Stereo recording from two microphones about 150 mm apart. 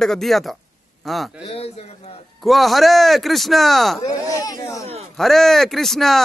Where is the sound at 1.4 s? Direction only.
40° left (ahead or behind).